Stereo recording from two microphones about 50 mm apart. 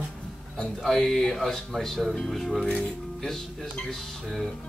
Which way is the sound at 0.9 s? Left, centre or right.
Centre.